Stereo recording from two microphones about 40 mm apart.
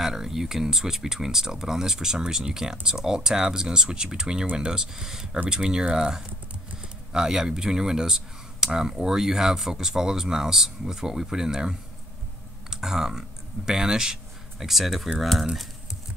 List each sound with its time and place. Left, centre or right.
0.0 s speech: centre
14.7 s speech: centre